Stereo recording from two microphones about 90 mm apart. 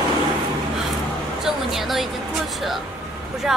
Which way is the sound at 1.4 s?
5° right (ahead or behind).